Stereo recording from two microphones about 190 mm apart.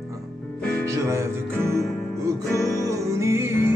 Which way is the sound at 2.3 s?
15° right (ahead or behind).